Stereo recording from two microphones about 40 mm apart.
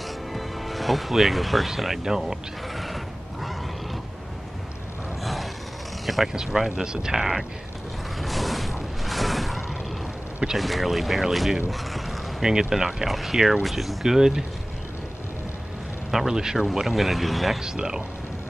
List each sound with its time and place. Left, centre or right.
0.3 s speech: centre
2.7 s neigh: centre
5.2 s a sound: centre
6.0 s speech: centre
8.2 s a sound: centre
10.6 s speech: centre
12.4 s speech: centre
14.0 s speech: centre
16.1 s speech: centre
16.8 s speech: centre
17.6 s speech: centre